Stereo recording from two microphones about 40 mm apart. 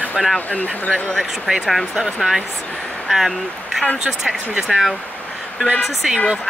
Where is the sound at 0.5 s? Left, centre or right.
Left.